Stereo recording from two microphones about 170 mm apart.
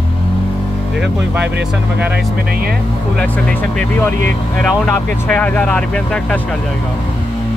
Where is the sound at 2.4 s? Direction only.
65° right (ahead or behind).